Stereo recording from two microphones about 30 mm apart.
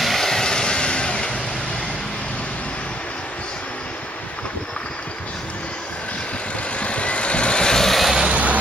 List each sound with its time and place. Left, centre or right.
0.0 s vehicle: centre
0.3 s vehicle: left
6.8 s vehicle: left
7.6 s vehicle: left
7.9 s vehicle: centre
8.3 s music: right